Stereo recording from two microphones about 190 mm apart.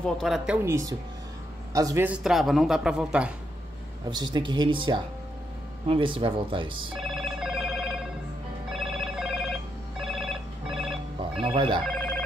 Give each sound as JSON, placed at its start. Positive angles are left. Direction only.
{"t": 0.0, "sound": "a man's voice", "side_deg": 0}
{"t": 0.7, "sound": "a man's voice", "side_deg": -15}
{"t": 4.1, "sound": "speech", "side_deg": -20}
{"t": 7.0, "sound": "telephone bell ringing", "side_deg": 0}
{"t": 11.4, "sound": "speech", "side_deg": -25}
{"t": 11.9, "sound": "telephone bell ringing", "side_deg": 5}